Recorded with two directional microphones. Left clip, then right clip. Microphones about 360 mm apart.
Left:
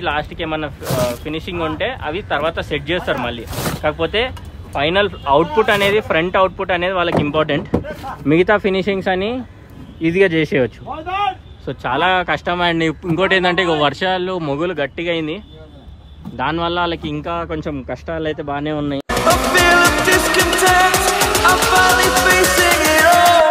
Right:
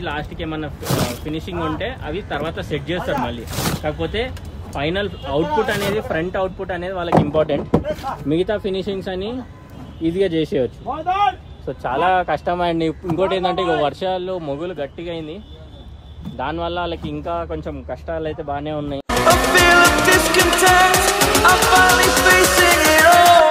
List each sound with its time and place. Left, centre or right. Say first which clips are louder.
0.0 s a man's voice: left 6 dB; centre
16.3 s a man's voice: left 5 dB; left
19.2 s music: even; centre